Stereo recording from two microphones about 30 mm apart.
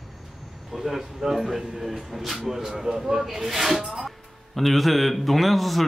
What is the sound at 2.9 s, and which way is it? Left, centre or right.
Speech, right.